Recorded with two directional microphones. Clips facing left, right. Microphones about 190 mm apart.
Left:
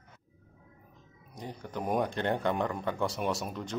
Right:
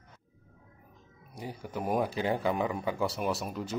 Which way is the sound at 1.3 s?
10° right (ahead or behind).